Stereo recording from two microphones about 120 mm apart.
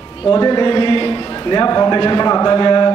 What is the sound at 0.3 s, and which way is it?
A man's voice, 35° left (ahead or behind).